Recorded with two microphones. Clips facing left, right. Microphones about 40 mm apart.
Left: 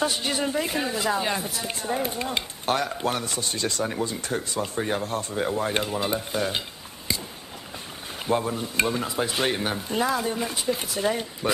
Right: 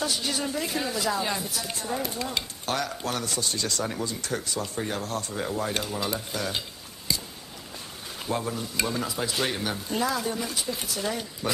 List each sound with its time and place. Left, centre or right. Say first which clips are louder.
0.0 s speech: left 3 dB; left
7.1 s a sound: left 1 dB; left
8.5 s speech: left 4 dB; left